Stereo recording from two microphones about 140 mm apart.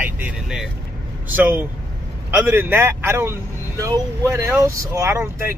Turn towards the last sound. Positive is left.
turn(degrees=-20)  # may be behind; listen again after turning